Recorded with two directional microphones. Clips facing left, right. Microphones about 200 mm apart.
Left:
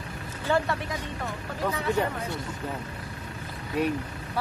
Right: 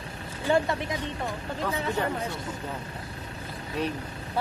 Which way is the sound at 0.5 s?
20° right (ahead or behind).